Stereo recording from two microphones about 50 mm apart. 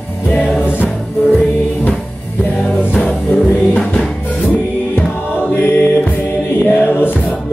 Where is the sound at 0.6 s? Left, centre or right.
Left.